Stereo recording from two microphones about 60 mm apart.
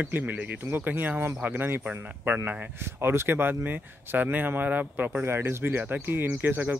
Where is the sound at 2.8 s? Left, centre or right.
Right.